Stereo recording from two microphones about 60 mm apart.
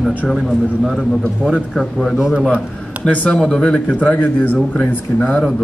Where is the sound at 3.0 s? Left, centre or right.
Left.